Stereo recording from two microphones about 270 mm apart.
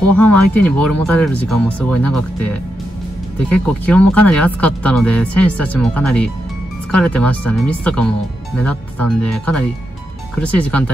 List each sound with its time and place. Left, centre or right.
0.1 s speech: centre
3.4 s speech: centre